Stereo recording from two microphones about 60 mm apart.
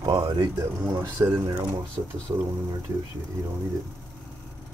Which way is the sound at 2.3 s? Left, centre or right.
Right.